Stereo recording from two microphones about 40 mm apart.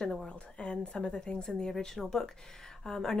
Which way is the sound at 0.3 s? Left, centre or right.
Left.